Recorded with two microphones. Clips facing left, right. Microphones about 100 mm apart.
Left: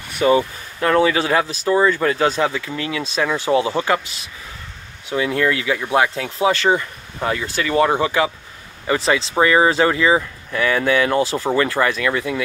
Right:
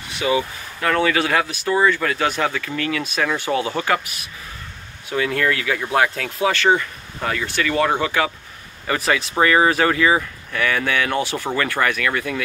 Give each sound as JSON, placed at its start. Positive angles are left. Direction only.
{"t": 0.2, "sound": "speech", "side_deg": 45}
{"t": 0.7, "sound": "speech", "side_deg": 30}